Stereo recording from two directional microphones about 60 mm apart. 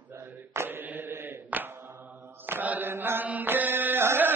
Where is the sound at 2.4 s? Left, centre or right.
Right.